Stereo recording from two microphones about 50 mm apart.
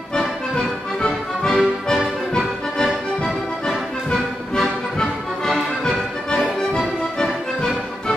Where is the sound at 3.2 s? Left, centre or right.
Centre.